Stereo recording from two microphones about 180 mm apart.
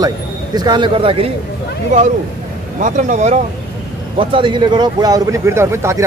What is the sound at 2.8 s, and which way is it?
Speech, 45° right (ahead or behind).